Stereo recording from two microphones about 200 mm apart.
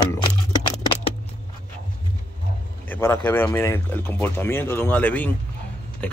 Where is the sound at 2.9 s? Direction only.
10° left (ahead or behind).